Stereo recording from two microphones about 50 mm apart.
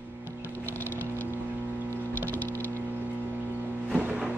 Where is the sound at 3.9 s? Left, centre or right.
Right.